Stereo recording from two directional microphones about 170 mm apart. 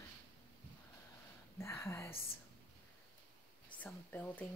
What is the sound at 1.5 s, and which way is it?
Speech, 15° left (ahead or behind).